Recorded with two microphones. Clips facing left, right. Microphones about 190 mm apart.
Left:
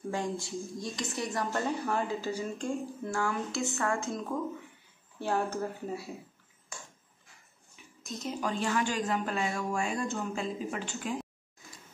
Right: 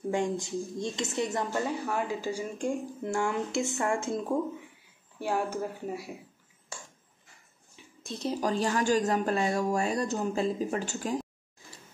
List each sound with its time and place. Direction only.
0.1 s speech: 20° right (ahead or behind)
1.5 s speech: 10° right (ahead or behind); by 4.4 s 25° right (ahead or behind)
5.2 s speech: 10° right (ahead or behind)
7.7 s a woman's voice: 30° right (ahead or behind)